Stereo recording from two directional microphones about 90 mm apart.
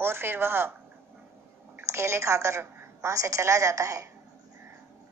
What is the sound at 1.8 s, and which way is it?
A woman's voice, 30° right (ahead or behind).